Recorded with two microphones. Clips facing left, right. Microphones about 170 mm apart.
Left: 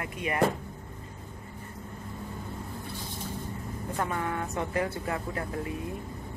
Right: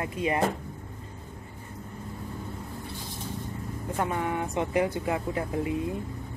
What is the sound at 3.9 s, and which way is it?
Speech, 15° right (ahead or behind).